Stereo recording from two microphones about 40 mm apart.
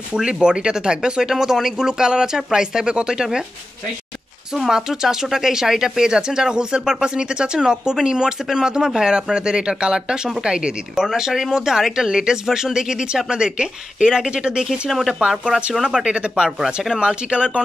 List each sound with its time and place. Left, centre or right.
0.1 s speech: right
4.6 s speech: centre
14.7 s speech: centre
15.1 s speech: right
16.9 s speech: right